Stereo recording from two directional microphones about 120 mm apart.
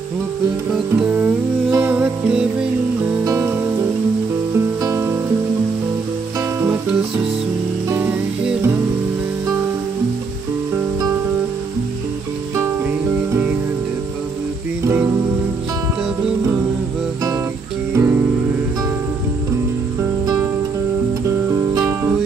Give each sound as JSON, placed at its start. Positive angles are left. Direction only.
{"t": 0.8, "sound": "music", "side_deg": -15}
{"t": 3.3, "sound": "music", "side_deg": -25}
{"t": 4.8, "sound": "music", "side_deg": -20}
{"t": 6.7, "sound": "music", "side_deg": -10}
{"t": 13.3, "sound": "music", "side_deg": -15}
{"t": 14.9, "sound": "music", "side_deg": -20}
{"t": 17.9, "sound": "music", "side_deg": -20}
{"t": 20.0, "sound": "music", "side_deg": -30}